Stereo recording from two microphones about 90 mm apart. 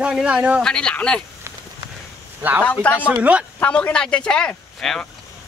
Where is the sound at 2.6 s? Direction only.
15° left (ahead or behind).